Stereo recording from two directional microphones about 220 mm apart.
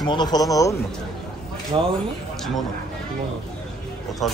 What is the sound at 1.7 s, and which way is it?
Speech, 20° right (ahead or behind).